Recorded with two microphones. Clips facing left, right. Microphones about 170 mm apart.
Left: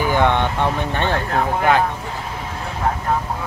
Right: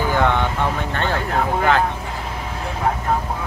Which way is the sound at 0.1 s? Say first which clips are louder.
Left 2 dB; 20° left (ahead or behind).